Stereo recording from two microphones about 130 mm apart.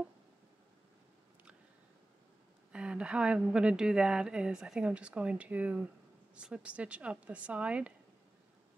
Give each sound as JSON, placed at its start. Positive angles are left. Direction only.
{"t": 2.7, "sound": "speech", "side_deg": -10}